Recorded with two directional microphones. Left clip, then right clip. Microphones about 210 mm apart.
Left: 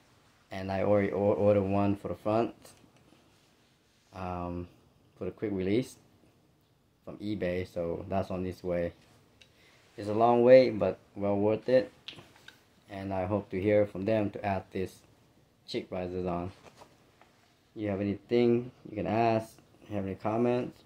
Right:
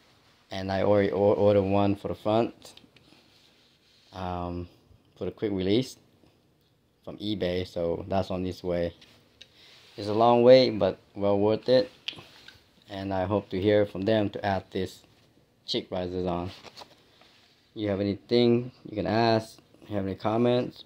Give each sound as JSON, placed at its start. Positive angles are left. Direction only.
{"t": 0.5, "sound": "speech", "side_deg": -20}
{"t": 4.1, "sound": "speech", "side_deg": -20}
{"t": 7.1, "sound": "speech", "side_deg": -20}
{"t": 9.9, "sound": "speech", "side_deg": -20}
{"t": 17.7, "sound": "speech", "side_deg": -25}